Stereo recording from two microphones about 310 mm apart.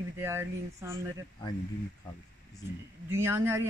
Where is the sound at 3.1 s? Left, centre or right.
Centre.